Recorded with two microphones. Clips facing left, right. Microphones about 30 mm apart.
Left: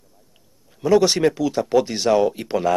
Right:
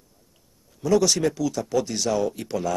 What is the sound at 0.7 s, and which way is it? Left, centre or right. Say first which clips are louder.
Speech: left 4 dB; left.